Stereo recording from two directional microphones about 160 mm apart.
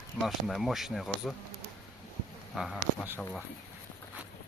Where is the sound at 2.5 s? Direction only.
Centre (ahead or behind).